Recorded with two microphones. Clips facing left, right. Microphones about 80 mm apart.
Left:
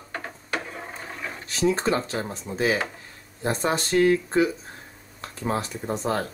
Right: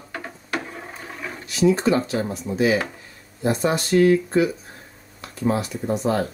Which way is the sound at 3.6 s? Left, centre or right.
Left.